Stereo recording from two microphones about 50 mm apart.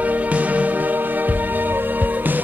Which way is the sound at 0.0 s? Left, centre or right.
Right.